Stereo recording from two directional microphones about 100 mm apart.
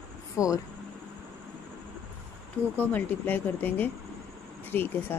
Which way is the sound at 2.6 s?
25° right (ahead or behind).